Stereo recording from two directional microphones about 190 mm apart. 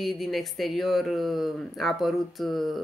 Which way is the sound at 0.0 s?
Centre (ahead or behind).